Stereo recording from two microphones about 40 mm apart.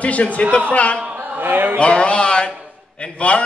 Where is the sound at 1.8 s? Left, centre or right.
Left.